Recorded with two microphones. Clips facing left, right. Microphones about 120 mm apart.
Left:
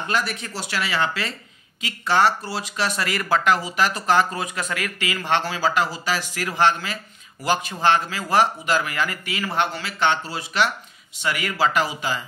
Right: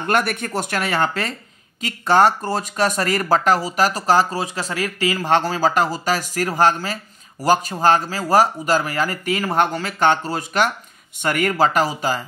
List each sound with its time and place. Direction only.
0.0 s speech: 55° right (ahead or behind)